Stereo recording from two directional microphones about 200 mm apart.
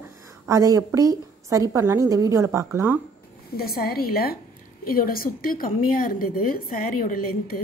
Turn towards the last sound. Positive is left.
turn(degrees=45)  # may be behind; listen again after turning